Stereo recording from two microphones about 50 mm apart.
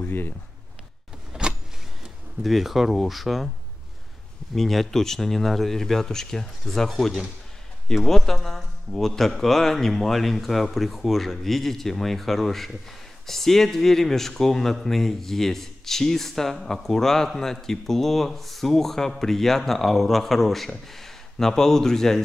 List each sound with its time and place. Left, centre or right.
0.0 s speech: left
1.3 s power windows: centre
2.4 s a man's voice: centre
4.6 s a man's voice: centre